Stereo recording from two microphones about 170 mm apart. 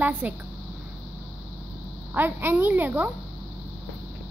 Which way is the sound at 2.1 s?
10° right (ahead or behind).